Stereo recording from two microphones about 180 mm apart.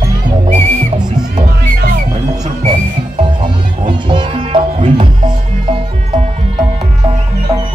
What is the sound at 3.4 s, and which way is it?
Music, 25° right (ahead or behind).